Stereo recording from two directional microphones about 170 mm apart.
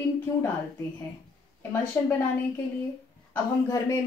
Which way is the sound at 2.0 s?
15° left (ahead or behind).